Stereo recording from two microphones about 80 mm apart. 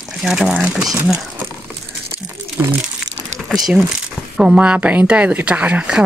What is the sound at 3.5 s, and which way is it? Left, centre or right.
Speech, centre.